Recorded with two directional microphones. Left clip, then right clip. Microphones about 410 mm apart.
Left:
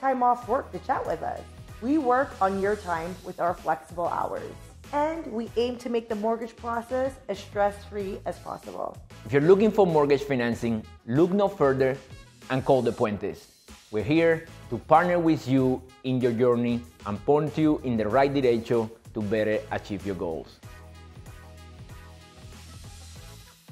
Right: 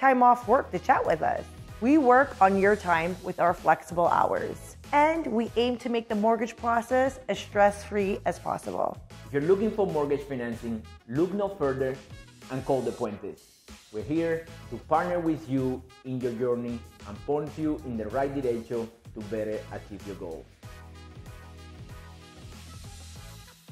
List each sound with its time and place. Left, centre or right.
0.0 s speech: right
5.5 s speech: right
6.2 s speech: right
9.3 s a man's voice: left